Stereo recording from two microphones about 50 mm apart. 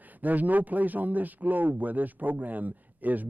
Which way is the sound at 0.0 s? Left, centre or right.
Right.